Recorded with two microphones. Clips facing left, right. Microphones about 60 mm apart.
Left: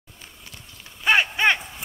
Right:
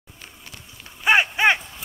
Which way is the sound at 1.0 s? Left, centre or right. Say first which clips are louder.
Right 2 dB; centre.